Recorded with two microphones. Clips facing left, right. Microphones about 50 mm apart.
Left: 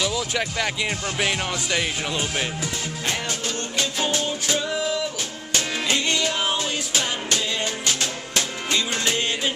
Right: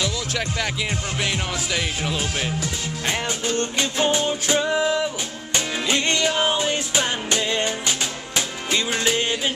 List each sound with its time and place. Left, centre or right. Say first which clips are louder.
0.0 s music: left 1 dB; centre
1.2 s speech: left 2 dB; centre
3.7 s music: right 1 dB; centre
6.2 s music: right 3 dB; centre